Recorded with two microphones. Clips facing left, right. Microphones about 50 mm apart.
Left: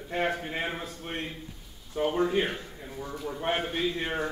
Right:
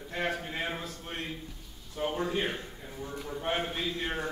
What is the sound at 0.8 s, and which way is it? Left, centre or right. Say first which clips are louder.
Speech: left 3 dB; left.